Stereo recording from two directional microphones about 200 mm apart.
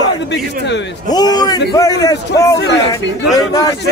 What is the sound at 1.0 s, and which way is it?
A man's voice, 20° left (ahead or behind).